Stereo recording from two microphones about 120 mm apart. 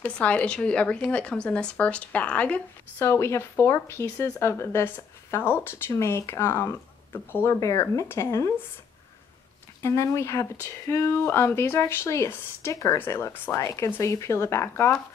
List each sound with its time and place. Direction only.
0.0 s speech: 10° left (ahead or behind)
3.0 s speech: 25° left (ahead or behind)
9.8 s speech: 25° left (ahead or behind)